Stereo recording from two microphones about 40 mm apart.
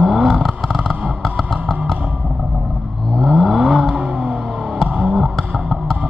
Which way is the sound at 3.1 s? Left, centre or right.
Centre.